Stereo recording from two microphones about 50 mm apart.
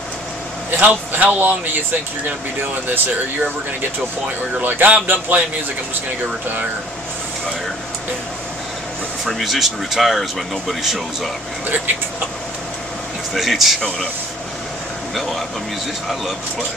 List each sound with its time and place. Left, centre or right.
0.7 s speech: right
4.6 s a man's voice: right
9.2 s speech: centre
13.3 s speech: centre
15.1 s speech: centre